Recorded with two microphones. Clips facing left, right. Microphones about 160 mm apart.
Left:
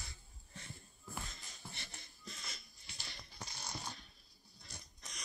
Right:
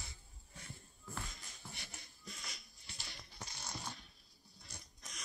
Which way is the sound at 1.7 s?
10° right (ahead or behind).